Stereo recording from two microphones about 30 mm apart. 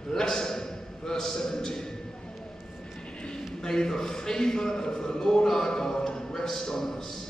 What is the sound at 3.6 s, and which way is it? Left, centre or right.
A man's voice, left.